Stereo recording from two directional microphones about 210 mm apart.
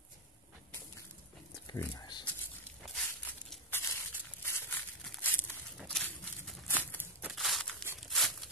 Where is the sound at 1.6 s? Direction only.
15° left (ahead or behind).